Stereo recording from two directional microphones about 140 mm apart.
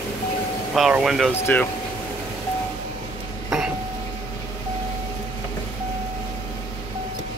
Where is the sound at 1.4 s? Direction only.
15° left (ahead or behind).